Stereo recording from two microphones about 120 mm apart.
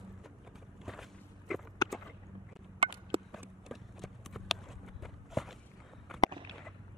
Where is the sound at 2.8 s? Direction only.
45° right (ahead or behind).